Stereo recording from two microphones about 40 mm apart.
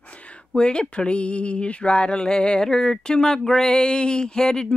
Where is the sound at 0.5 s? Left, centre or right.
Left.